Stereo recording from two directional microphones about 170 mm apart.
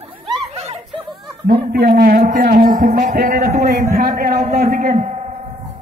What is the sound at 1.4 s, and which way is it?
A man's voice, 65° right (ahead or behind).